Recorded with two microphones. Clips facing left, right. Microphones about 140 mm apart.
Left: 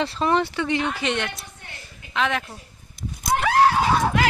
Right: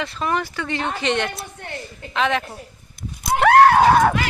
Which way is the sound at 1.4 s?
55° right (ahead or behind).